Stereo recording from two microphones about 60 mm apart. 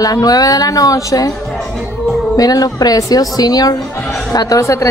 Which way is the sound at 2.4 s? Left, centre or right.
Left.